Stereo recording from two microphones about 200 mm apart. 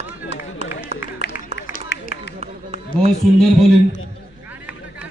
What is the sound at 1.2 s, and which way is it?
Run, 55° left (ahead or behind).